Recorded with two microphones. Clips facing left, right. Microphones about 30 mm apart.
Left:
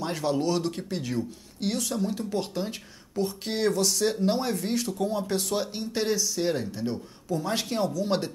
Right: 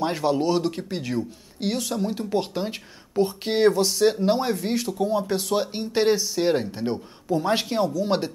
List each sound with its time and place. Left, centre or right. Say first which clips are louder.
0.0 s speech: right 4 dB; right
7.7 s speech: right 4 dB; centre